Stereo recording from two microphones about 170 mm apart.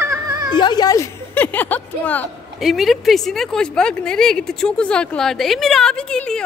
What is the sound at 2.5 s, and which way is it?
Speech, centre (ahead or behind).